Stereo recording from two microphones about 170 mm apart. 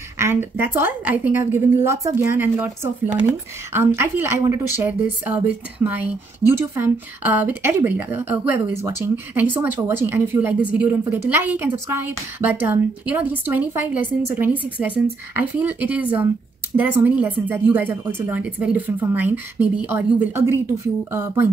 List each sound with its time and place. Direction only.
0.2 s speech: 15° right (ahead or behind)